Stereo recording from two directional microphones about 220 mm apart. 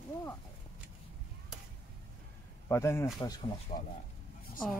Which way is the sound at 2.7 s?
10° left (ahead or behind).